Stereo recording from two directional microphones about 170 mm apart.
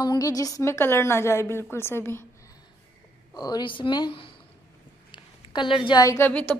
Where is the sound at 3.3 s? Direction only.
25° left (ahead or behind).